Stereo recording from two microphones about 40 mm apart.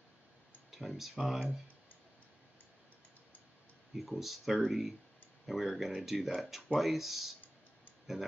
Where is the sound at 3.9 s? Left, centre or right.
Centre.